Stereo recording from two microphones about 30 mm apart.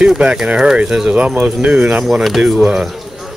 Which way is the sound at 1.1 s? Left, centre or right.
Right.